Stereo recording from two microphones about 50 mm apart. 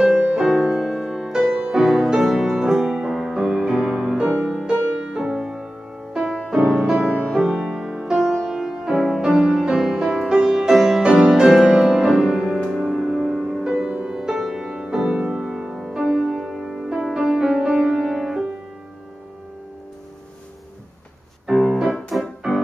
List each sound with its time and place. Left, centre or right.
0.0 s music: centre
13.8 s music: right
14.1 s music: centre
15.4 s music: centre
16.3 s music: centre
21.5 s piano: centre
22.1 s music: centre